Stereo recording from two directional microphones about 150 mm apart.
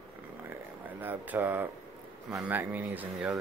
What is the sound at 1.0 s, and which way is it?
Speech, 15° right (ahead or behind).